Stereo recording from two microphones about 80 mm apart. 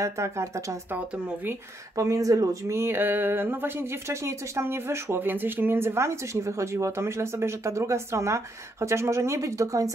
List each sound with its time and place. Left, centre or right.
0.0 s speech: right
2.0 s speech: right